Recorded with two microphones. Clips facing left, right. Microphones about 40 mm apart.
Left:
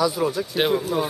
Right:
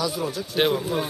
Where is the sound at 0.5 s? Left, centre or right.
Centre.